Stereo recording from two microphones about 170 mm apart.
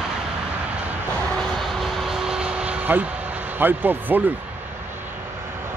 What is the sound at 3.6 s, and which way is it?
Speech, 10° right (ahead or behind).